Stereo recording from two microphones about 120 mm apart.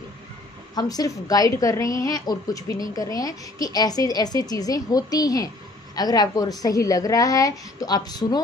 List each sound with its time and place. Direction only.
0.7 s a woman's voice: 30° left (ahead or behind)